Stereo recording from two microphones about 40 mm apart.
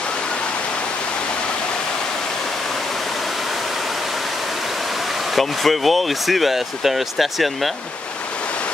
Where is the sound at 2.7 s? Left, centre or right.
Centre.